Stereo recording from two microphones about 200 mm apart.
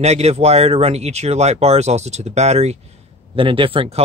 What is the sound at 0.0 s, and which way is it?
Speech, 30° right (ahead or behind).